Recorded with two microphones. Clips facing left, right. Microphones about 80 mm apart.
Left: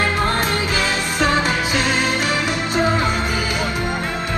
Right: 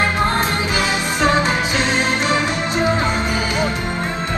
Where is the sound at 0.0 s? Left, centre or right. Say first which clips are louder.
Right 1 dB; right.